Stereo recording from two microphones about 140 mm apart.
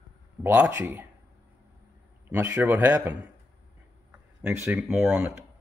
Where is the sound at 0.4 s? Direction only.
15° right (ahead or behind).